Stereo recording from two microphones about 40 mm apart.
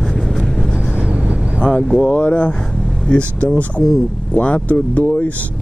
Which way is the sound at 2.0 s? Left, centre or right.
Left.